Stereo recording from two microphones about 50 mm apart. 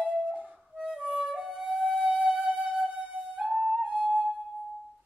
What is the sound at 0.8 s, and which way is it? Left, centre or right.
Music, centre.